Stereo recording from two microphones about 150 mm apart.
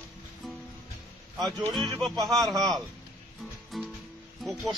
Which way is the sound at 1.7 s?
Centre (ahead or behind).